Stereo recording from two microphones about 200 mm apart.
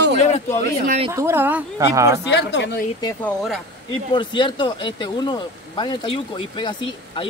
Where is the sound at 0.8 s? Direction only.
30° right (ahead or behind).